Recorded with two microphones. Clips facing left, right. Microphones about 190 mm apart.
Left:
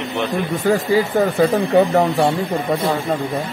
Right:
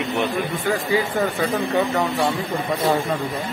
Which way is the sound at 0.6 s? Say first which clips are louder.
Left 6 dB; 35° left (ahead or behind).